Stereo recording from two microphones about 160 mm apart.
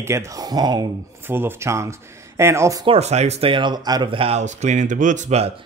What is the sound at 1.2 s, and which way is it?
Speech, 15° right (ahead or behind).